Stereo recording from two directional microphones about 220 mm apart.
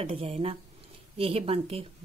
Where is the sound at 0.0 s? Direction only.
25° right (ahead or behind).